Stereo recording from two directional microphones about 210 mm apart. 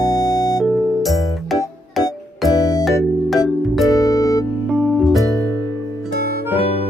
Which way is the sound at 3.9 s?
15° left (ahead or behind).